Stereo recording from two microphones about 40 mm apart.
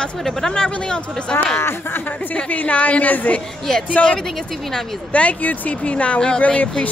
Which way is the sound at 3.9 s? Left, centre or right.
Left.